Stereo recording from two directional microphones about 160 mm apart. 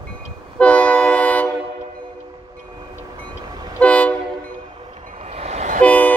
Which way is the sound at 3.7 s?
10° left (ahead or behind).